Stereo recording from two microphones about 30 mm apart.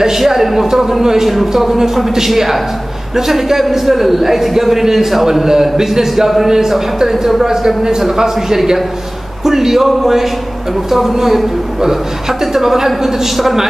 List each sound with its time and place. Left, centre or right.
0.2 s a man's voice: centre
9.4 s a sound: centre
9.8 s a man's voice: centre